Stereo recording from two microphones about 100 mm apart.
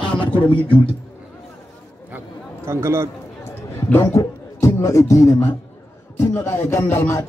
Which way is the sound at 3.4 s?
25° left (ahead or behind).